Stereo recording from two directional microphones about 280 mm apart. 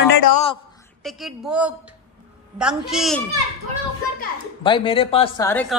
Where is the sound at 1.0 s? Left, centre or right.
Centre.